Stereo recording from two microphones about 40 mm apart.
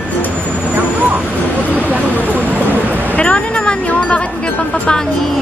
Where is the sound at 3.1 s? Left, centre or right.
Left.